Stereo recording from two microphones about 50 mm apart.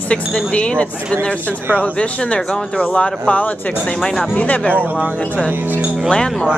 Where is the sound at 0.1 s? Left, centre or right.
Left.